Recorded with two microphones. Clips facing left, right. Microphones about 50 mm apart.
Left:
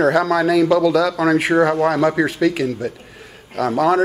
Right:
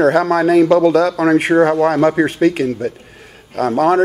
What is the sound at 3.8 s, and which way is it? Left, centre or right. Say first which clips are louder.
Speech: right 3 dB; right.